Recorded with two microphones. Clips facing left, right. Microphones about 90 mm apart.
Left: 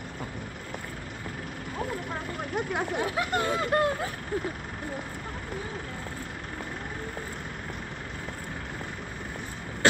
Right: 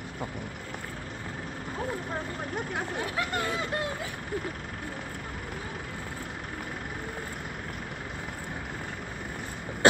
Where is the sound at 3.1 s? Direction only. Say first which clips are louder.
Left 1 dB; 25° left (ahead or behind).